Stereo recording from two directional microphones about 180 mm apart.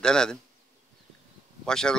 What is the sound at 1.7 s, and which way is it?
Speech, 5° left (ahead or behind).